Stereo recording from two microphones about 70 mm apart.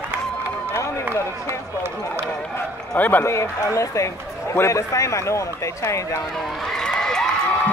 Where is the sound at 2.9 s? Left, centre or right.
Left.